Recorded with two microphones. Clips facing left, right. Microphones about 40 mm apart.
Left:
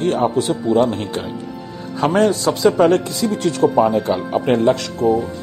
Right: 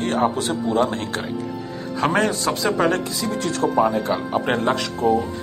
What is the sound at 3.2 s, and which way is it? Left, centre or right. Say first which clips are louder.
Speech: left 4 dB; centre.